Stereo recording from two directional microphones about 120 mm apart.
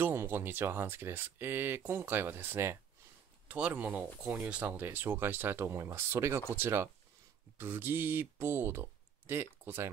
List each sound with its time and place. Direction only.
0.0 s speech: 20° right (ahead or behind)